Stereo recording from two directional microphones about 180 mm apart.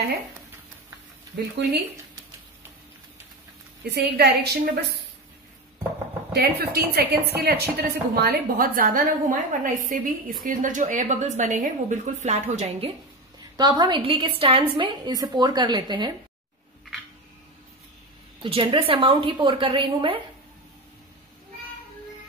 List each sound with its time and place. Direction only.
1.3 s speech: 65° right (ahead or behind)
3.9 s a woman's voice: 65° right (ahead or behind)
6.3 s a woman's voice: 60° right (ahead or behind); by 12.9 s 35° right (ahead or behind)
13.6 s a woman's voice: 25° right (ahead or behind)
18.4 s a woman's voice: 30° right (ahead or behind)